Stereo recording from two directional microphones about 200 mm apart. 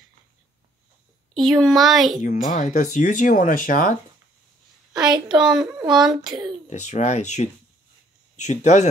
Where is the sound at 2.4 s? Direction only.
40° left (ahead or behind).